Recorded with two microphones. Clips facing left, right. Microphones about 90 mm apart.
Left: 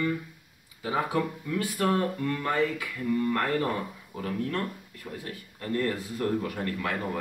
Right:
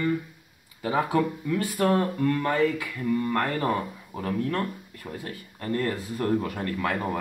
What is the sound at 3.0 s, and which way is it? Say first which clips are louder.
Speech: right 1 dB; 35° right (ahead or behind).